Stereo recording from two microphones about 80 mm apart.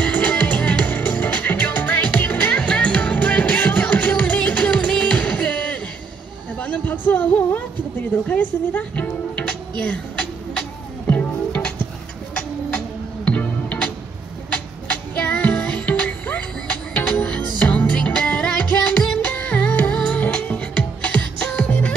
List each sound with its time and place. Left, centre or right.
0.0 s music: centre
6.6 s a sound: left
8.3 s music: centre
11.1 s music: centre
15.2 s music: centre